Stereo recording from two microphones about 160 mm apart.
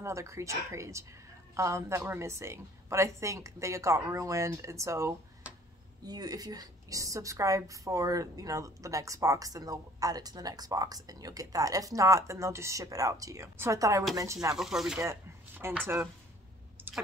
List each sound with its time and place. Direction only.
0.0 s a woman's voice: 20° right (ahead or behind)
14.5 s speech: 5° right (ahead or behind)
15.0 s a sound: 15° right (ahead or behind)